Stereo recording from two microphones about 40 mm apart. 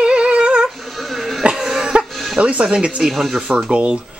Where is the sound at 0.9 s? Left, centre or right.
Centre.